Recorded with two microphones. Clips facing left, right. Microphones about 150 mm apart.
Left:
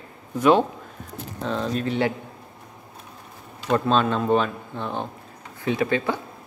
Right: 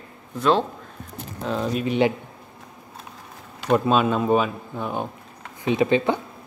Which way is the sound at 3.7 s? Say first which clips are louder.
Right 2 dB; 10° right (ahead or behind).